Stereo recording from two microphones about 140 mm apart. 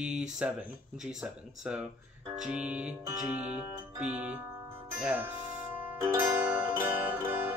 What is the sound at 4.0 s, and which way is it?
Music, 10° right (ahead or behind).